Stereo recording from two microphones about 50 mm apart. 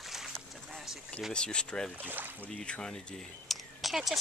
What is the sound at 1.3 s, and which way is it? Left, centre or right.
Speech, centre.